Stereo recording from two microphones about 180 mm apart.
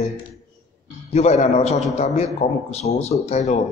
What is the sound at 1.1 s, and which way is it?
Speech, 35° left (ahead or behind).